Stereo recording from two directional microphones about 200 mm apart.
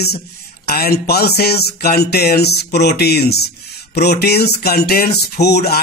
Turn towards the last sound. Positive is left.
turn(degrees=55)  # may be behind; listen again after turning